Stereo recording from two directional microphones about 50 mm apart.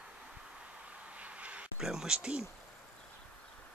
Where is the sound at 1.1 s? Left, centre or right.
Right.